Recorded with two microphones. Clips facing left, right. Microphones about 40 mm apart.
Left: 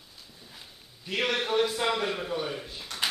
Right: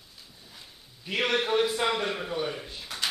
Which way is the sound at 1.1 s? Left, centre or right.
Centre.